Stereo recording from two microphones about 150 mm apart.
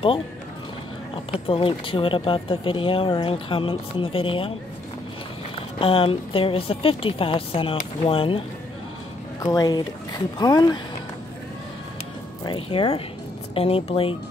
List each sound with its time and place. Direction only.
1.5 s speech: 35° left (ahead or behind)
5.8 s speech: 40° left (ahead or behind)
9.4 s speech: 25° left (ahead or behind)
12.4 s speech: 35° left (ahead or behind)